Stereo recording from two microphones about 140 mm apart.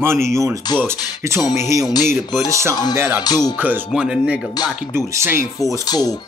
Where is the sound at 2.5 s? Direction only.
20° right (ahead or behind).